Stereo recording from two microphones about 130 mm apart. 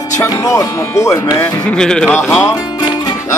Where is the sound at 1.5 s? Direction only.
10° left (ahead or behind).